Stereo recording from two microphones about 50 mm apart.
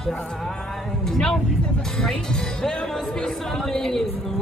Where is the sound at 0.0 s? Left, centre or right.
Centre.